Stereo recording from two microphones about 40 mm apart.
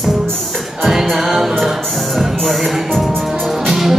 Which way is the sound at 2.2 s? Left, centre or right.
Centre.